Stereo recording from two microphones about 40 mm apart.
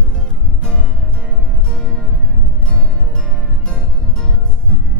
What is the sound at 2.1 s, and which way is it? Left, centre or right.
Music, right.